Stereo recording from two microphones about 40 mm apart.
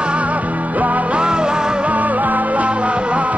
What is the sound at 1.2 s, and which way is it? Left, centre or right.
Music, right.